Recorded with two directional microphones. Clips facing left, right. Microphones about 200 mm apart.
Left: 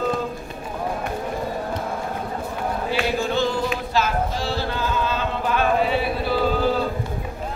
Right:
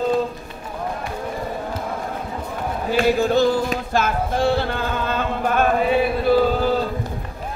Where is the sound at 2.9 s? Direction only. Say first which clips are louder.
Right 7 dB; 40° right (ahead or behind).